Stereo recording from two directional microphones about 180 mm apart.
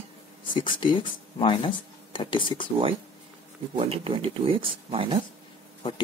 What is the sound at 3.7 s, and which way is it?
Speech, 30° right (ahead or behind).